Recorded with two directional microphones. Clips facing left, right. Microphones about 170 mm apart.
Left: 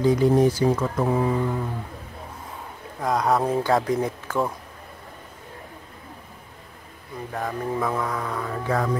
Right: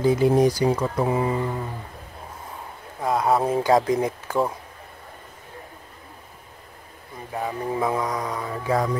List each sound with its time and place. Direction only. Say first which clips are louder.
0.0 s speech: even; 5° right (ahead or behind)
3.0 s speech: right 1 dB; 5° right (ahead or behind)
3.6 s speech: right 2 dB; 15° right (ahead or behind)
7.3 s speech: right 1 dB; 10° right (ahead or behind)